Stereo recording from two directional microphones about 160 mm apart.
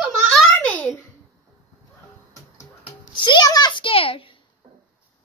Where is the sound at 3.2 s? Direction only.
25° left (ahead or behind).